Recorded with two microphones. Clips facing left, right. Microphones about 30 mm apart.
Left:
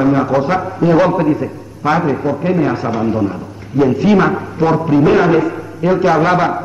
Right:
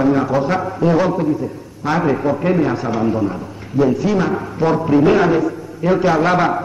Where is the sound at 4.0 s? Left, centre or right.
Left.